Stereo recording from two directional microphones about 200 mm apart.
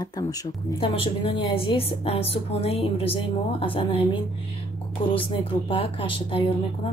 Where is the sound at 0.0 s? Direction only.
20° left (ahead or behind).